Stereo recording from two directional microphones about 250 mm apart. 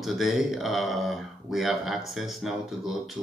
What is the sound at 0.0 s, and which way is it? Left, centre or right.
Speech, centre.